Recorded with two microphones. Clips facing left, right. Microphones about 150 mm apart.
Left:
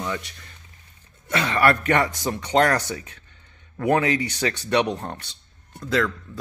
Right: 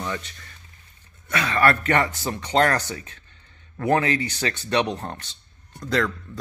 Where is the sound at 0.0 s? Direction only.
10° left (ahead or behind).